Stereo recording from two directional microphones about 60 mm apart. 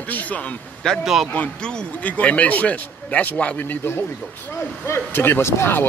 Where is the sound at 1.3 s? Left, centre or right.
Centre.